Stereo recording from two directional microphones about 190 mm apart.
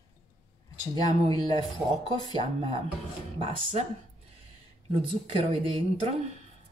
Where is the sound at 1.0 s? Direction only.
20° left (ahead or behind).